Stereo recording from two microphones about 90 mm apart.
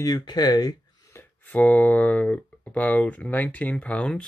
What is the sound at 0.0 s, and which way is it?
Speech, 50° left (ahead or behind).